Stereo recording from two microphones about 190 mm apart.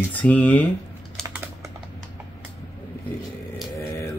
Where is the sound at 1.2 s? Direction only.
15° right (ahead or behind).